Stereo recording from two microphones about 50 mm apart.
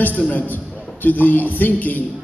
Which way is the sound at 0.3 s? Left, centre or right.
Left.